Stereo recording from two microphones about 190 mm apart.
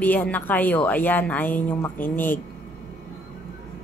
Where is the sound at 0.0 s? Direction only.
10° left (ahead or behind).